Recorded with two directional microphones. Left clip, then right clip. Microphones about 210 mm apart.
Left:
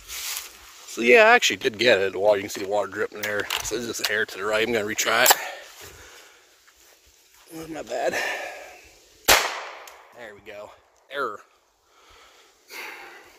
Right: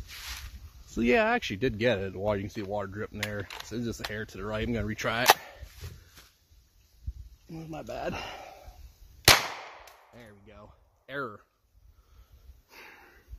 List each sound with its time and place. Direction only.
0.9 s speech: 25° left (ahead or behind)
7.5 s speech: 40° left (ahead or behind)
10.2 s speech: 40° left (ahead or behind)
11.1 s speech: 25° left (ahead or behind)
12.6 s sniff: 25° left (ahead or behind)